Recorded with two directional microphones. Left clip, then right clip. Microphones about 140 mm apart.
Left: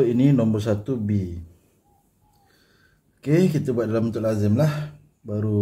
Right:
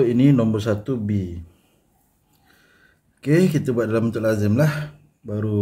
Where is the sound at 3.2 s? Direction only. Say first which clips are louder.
Right 2 dB; 20° right (ahead or behind).